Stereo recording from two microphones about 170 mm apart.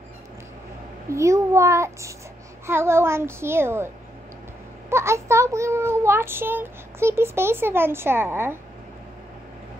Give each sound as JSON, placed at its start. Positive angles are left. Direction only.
{"t": 1.1, "sound": "a child's voice", "side_deg": -15}